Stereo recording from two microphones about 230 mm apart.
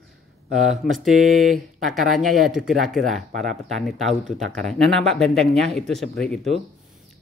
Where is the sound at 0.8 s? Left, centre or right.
Centre.